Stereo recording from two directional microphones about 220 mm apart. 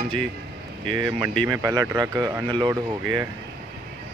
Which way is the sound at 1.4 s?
15° right (ahead or behind).